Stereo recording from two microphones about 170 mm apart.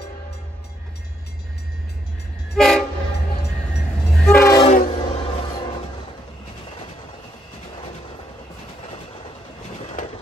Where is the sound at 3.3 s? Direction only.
70° left (ahead or behind).